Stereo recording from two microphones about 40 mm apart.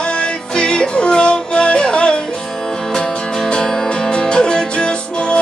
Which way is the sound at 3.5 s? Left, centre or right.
Left.